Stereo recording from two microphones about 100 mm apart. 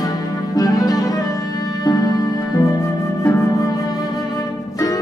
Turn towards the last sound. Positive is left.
turn(degrees=30)  # may be behind; listen again after turning